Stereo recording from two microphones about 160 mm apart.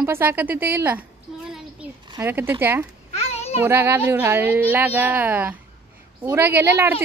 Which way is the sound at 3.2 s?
40° left (ahead or behind).